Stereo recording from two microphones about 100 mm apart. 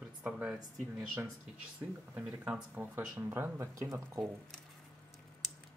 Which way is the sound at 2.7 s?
20° right (ahead or behind).